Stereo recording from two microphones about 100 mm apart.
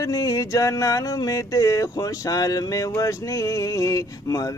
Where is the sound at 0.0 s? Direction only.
35° left (ahead or behind).